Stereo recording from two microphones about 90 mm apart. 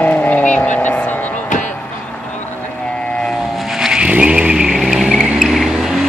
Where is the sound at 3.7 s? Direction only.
5° right (ahead or behind).